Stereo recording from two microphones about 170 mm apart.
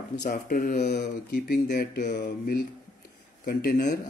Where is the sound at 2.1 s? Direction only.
65° left (ahead or behind).